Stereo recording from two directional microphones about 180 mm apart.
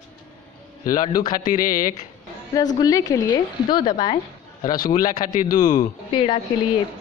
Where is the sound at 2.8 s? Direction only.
20° left (ahead or behind).